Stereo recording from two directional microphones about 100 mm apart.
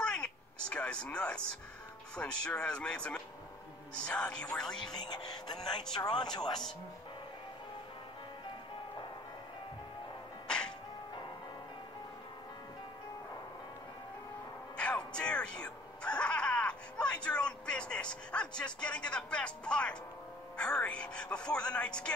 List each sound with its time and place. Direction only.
0.0 s a sound: 10° left (ahead or behind)
0.7 s speech: 10° left (ahead or behind)
4.9 s speech: 45° left (ahead or behind)
14.8 s music: 10° left (ahead or behind)